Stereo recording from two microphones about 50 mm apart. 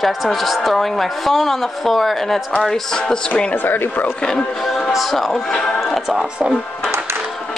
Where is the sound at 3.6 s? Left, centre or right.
Left.